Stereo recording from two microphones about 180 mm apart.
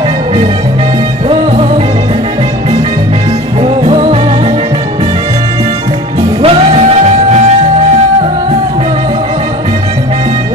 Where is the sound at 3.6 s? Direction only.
35° right (ahead or behind).